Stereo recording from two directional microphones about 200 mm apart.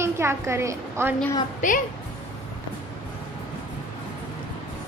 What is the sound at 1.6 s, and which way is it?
Speech, 40° left (ahead or behind).